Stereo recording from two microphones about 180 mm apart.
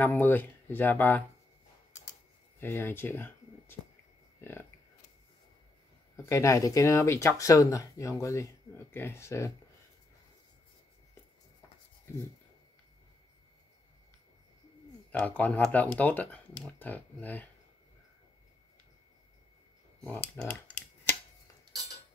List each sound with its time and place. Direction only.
0.0 s speech: 10° left (ahead or behind)
2.6 s speech: 10° left (ahead or behind)
6.1 s speech: 15° left (ahead or behind)
15.0 s speech: 5° left (ahead or behind)
20.0 s speech: 5° left (ahead or behind)